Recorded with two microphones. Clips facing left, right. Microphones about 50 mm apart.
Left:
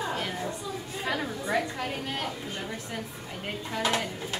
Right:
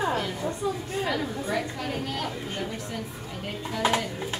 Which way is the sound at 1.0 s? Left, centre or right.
Centre.